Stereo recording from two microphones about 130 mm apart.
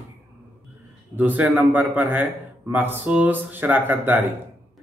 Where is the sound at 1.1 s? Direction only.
15° right (ahead or behind).